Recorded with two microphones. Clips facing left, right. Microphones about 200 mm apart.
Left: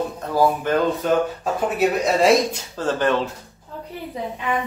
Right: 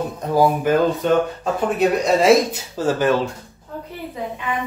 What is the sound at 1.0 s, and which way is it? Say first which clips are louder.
Speech: right 2 dB; 5° left (ahead or behind).